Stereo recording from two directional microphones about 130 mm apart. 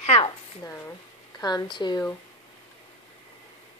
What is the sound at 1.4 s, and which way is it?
Speech, 30° left (ahead or behind).